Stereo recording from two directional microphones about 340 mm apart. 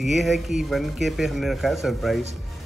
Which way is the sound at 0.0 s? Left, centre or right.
Centre.